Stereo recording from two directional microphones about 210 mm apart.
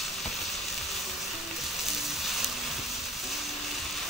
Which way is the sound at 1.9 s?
Centre (ahead or behind).